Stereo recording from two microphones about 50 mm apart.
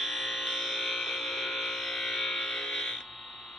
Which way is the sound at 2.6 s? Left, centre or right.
Centre.